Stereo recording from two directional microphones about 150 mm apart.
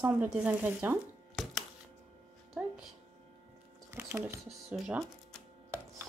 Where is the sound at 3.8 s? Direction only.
15° right (ahead or behind).